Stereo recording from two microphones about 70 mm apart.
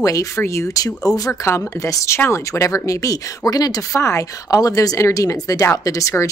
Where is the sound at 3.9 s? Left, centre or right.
Left.